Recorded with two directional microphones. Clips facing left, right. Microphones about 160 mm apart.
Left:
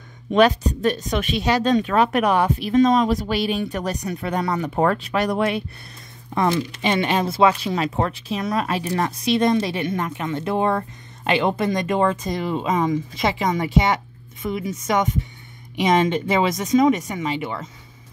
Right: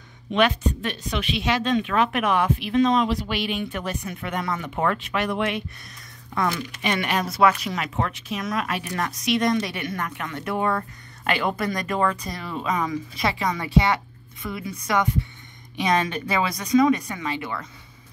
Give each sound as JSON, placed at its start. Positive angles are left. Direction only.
{"t": 0.3, "sound": "a woman's voice", "side_deg": 40}
{"t": 6.3, "sound": "speech", "side_deg": 30}